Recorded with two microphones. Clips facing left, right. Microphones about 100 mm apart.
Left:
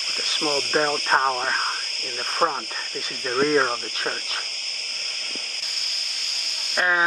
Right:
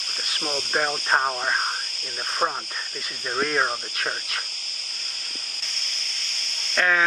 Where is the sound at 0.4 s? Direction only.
45° left (ahead or behind).